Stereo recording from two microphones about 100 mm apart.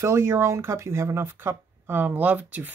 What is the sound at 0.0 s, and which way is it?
Speech, 25° right (ahead or behind).